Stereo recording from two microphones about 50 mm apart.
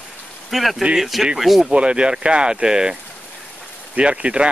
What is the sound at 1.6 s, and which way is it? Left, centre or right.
Speech, centre.